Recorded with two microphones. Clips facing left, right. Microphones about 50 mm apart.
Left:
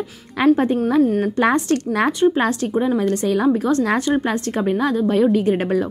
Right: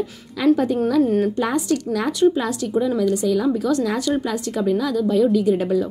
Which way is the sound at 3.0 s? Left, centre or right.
Left.